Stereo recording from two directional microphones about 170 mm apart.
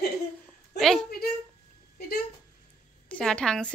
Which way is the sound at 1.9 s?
65° left (ahead or behind).